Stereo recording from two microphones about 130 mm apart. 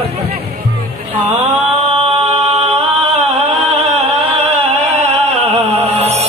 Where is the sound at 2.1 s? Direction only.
55° right (ahead or behind).